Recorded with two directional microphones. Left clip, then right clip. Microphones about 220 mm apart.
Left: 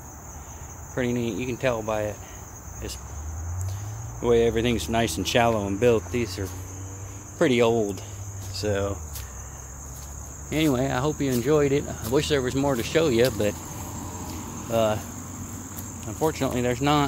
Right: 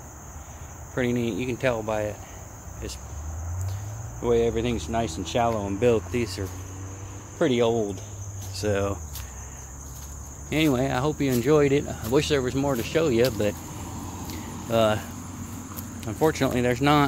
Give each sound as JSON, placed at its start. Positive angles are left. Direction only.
{"t": 0.9, "sound": "cricket", "side_deg": -10}
{"t": 4.2, "sound": "speech", "side_deg": 10}
{"t": 5.8, "sound": "speech", "side_deg": 5}
{"t": 7.3, "sound": "speech", "side_deg": 10}
{"t": 8.5, "sound": "cricket", "side_deg": -10}
{"t": 10.5, "sound": "speech", "side_deg": -5}
{"t": 14.7, "sound": "cricket", "side_deg": -15}
{"t": 16.0, "sound": "cricket", "side_deg": -20}